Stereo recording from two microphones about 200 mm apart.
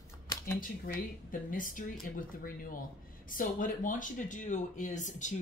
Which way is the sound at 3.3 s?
45° left (ahead or behind).